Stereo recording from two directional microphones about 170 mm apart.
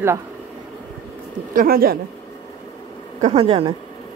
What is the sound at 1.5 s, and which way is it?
Speech, 60° right (ahead or behind).